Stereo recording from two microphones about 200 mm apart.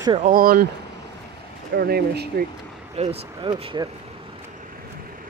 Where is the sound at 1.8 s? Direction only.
50° right (ahead or behind).